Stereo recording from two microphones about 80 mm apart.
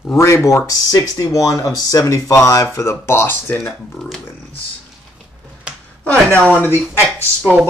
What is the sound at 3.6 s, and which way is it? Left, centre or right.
Speech, centre.